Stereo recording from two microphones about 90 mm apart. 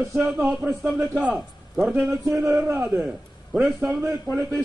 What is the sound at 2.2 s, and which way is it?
Speech, 40° right (ahead or behind).